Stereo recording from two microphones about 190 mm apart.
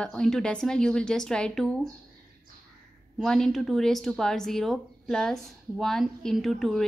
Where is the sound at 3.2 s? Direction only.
Centre (ahead or behind).